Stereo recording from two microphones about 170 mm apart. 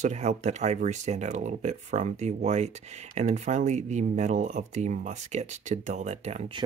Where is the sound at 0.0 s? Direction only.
45° right (ahead or behind).